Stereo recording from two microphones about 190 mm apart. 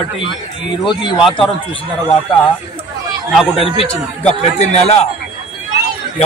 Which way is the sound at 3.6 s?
30° left (ahead or behind).